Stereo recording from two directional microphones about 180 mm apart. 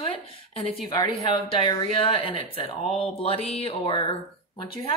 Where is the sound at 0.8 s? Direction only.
20° left (ahead or behind).